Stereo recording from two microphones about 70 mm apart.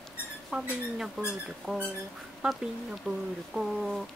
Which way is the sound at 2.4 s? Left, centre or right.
Centre.